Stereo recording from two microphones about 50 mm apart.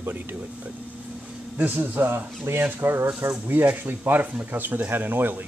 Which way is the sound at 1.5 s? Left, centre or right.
Right.